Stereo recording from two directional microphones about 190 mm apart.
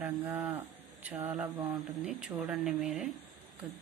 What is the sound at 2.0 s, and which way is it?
Speech, 5° right (ahead or behind).